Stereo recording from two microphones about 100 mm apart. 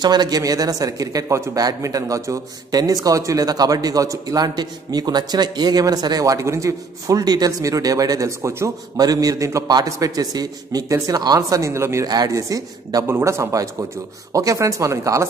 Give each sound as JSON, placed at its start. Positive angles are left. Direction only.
{"t": 0.0, "sound": "a man's voice", "side_deg": -45}